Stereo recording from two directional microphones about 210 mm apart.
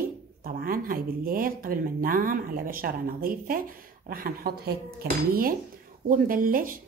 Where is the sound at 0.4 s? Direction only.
45° right (ahead or behind).